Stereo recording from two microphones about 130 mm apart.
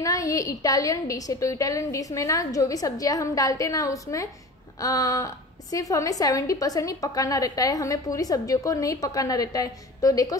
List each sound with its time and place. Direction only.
0.0 s a woman's voice: 25° left (ahead or behind)